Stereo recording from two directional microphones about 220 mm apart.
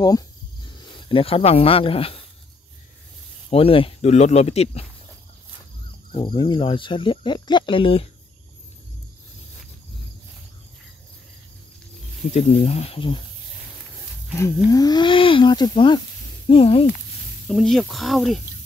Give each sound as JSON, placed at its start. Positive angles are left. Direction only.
{"t": 0.7, "sound": "speech", "side_deg": 20}
{"t": 3.4, "sound": "speech", "side_deg": 25}
{"t": 6.1, "sound": "speech", "side_deg": 20}
{"t": 12.4, "sound": "speech", "side_deg": 25}
{"t": 14.3, "sound": "speech", "side_deg": 15}
{"t": 17.5, "sound": "speech", "side_deg": 0}